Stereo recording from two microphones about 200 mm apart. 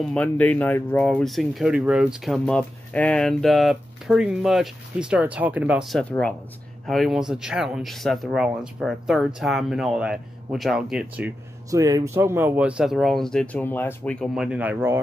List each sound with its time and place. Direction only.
0.1 s speech: 5° left (ahead or behind); by 15.0 s 10° right (ahead or behind)